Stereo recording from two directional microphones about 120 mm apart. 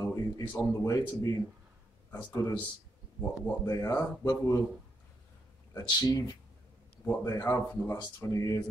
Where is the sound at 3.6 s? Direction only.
30° left (ahead or behind).